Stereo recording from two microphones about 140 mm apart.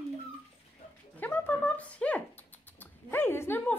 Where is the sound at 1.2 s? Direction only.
10° left (ahead or behind).